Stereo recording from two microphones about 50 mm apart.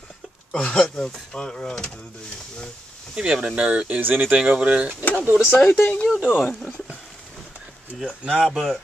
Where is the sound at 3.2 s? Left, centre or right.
Centre.